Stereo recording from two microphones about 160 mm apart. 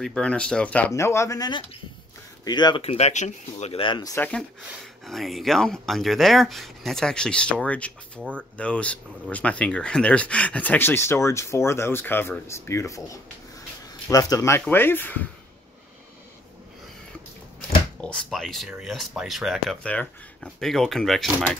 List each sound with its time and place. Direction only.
0.0 s speech: 5° left (ahead or behind); by 2.8 s 25° left (ahead or behind)
2.8 s speech: 40° left (ahead or behind)
4.1 s speech: 10° left (ahead or behind)
17.6 s speech: 5° left (ahead or behind)